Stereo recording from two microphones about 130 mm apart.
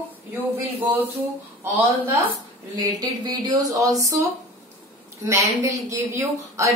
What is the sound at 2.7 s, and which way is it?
A woman's voice, 30° right (ahead or behind).